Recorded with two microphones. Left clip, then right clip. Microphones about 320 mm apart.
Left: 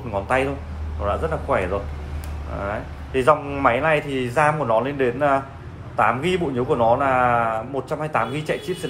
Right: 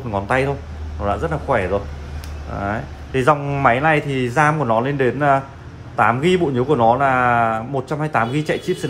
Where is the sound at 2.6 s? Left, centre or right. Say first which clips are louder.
Right 4 dB; right.